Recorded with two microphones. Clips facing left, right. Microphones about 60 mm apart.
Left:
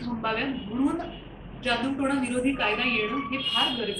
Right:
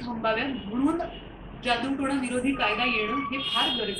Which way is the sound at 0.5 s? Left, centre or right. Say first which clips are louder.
Even; right.